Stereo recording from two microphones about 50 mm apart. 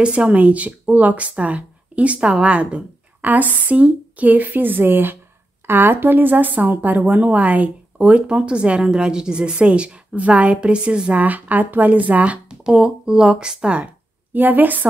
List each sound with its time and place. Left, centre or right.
0.0 s speech: right
11.1 s speech: right
12.4 s speech: centre
14.3 s speech: right